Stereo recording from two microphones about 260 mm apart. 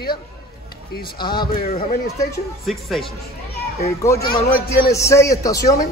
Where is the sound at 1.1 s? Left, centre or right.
Centre.